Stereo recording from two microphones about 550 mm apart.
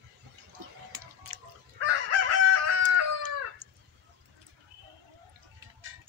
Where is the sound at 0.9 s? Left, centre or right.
Right.